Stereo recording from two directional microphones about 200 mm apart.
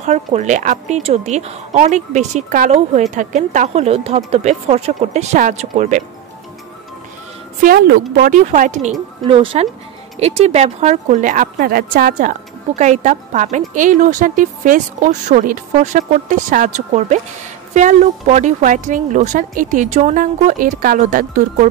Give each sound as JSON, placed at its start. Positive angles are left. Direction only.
{"t": 0.0, "sound": "speech", "side_deg": -35}
{"t": 7.6, "sound": "speech", "side_deg": -50}
{"t": 9.2, "sound": "speech", "side_deg": -25}